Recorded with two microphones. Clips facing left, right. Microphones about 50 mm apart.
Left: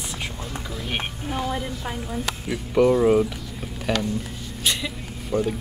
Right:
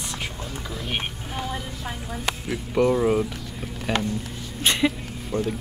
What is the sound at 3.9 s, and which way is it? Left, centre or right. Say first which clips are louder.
Speech: even; right.